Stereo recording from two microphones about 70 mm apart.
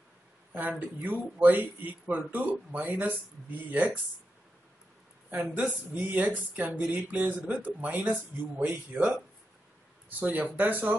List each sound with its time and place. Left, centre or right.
0.5 s speech: right
5.3 s speech: right
10.3 s speech: right